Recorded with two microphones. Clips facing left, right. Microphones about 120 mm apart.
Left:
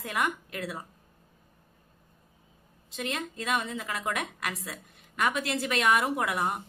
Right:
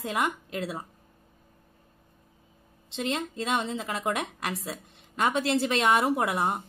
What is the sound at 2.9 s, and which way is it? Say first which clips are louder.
A woman's voice: right 4 dB; 25° right (ahead or behind).